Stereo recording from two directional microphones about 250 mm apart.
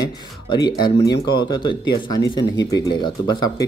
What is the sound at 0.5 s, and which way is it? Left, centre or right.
Speech, centre.